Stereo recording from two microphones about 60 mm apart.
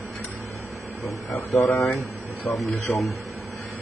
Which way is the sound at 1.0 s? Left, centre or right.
Left.